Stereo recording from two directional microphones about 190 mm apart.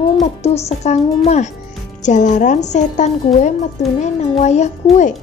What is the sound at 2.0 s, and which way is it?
Speech, 40° left (ahead or behind).